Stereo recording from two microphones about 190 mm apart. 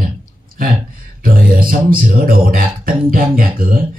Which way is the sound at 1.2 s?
50° right (ahead or behind).